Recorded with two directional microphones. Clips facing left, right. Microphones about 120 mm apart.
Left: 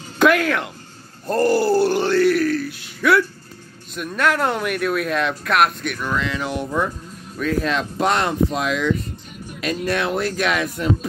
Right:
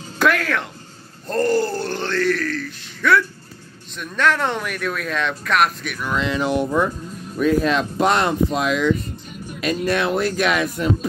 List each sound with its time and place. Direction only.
0.2 s speech: 5° left (ahead or behind)
6.1 s speech: 25° right (ahead or behind)